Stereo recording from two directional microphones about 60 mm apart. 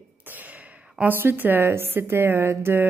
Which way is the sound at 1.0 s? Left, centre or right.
Right.